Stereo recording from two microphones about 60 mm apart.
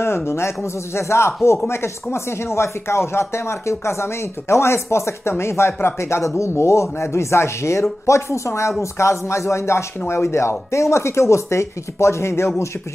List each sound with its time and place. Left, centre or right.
0.0 s speech: left